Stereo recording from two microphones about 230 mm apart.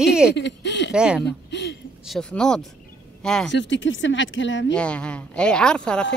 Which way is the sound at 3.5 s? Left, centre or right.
Left.